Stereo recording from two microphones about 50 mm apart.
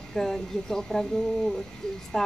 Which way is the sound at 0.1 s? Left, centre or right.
Centre.